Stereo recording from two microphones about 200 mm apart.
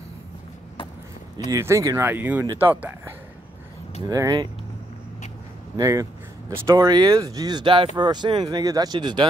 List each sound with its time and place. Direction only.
1.5 s speech: 15° right (ahead or behind)
4.0 s speech: 15° right (ahead or behind)
5.8 s speech: 15° right (ahead or behind)